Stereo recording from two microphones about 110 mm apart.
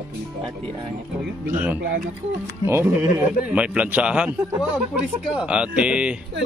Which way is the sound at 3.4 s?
10° right (ahead or behind).